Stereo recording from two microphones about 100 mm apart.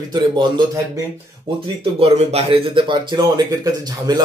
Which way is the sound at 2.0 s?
80° right.